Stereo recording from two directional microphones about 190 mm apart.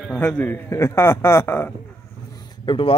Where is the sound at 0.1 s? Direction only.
5° left (ahead or behind).